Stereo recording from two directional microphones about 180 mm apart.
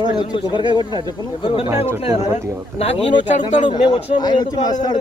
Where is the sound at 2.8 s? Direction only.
35° left (ahead or behind).